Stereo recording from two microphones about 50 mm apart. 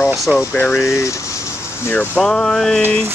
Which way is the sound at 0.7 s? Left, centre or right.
Left.